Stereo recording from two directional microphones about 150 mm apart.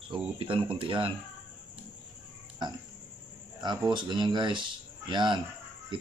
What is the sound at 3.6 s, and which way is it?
Speech, 30° right (ahead or behind).